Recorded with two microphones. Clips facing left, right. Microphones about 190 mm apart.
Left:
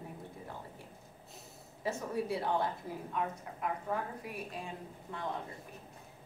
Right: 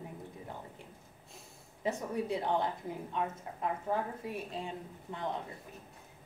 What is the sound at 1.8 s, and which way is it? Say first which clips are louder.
A woman's voice: right 1 dB; 20° right (ahead or behind).